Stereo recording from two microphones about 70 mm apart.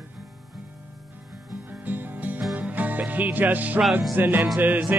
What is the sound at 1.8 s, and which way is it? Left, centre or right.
Music, right.